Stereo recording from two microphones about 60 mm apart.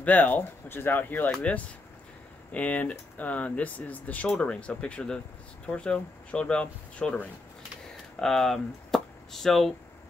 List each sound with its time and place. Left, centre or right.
0.0 s speech: left
2.5 s speech: left
8.2 s speech: centre